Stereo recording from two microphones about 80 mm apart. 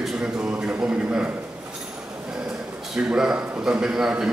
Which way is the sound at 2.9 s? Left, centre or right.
Centre.